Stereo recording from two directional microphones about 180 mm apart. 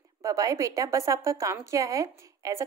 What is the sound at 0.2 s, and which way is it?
A woman's voice, 15° right (ahead or behind).